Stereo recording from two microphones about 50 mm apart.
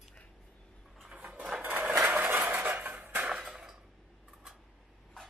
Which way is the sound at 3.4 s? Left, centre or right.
Centre.